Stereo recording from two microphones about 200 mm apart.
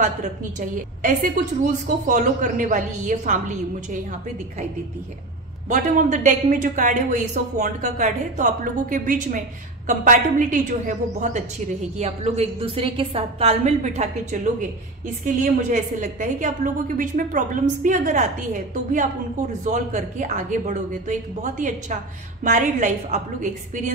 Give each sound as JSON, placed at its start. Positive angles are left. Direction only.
{"t": 0.0, "sound": "speech", "side_deg": -40}
{"t": 5.7, "sound": "speech", "side_deg": -40}
{"t": 15.7, "sound": "speech", "side_deg": -40}